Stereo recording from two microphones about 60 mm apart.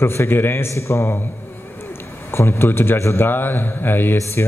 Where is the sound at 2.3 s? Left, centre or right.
Left.